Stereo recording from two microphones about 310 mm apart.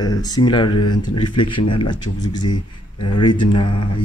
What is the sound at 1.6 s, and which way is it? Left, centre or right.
Speech, left.